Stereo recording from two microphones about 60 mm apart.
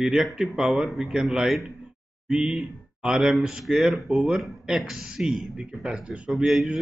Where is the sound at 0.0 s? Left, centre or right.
Centre.